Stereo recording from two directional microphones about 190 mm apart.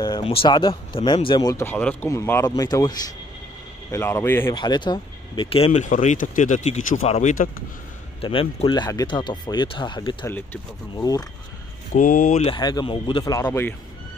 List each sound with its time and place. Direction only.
0.0 s a man's voice: 25° left (ahead or behind)
4.6 s speech: 25° left (ahead or behind); by 7.6 s 40° left (ahead or behind)
8.2 s speech: 30° left (ahead or behind)
11.9 s speech: 45° left (ahead or behind)
12.5 s speech: 20° left (ahead or behind)